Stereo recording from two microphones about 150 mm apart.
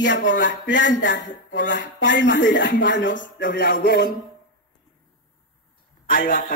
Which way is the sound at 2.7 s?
75° left (ahead or behind).